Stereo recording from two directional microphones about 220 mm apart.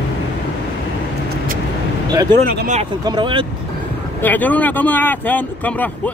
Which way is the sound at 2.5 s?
35° right (ahead or behind).